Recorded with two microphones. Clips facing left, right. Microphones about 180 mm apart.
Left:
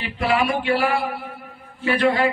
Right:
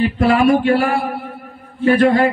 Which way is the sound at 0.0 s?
45° right (ahead or behind).